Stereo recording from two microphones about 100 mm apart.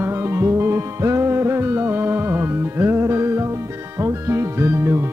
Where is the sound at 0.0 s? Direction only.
25° right (ahead or behind).